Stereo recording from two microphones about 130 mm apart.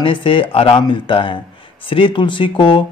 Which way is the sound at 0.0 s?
40° left (ahead or behind).